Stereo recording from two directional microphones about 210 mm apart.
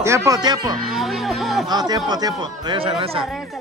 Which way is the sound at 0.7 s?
Centre (ahead or behind).